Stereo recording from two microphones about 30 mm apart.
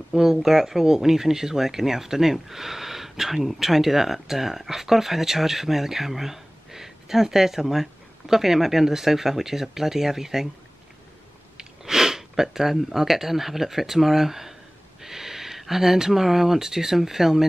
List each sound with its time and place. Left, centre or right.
0.1 s speech: centre
11.5 s a sound: centre
12.7 s speech: centre